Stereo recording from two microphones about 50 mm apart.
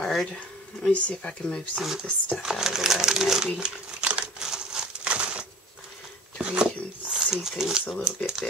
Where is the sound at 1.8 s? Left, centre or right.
Centre.